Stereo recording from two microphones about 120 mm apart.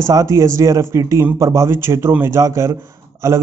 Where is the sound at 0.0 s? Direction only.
25° right (ahead or behind).